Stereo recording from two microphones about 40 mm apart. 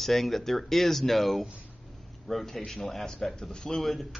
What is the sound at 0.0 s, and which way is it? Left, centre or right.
Speech, centre.